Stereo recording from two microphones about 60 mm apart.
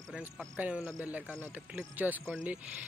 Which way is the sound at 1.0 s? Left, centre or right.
Right.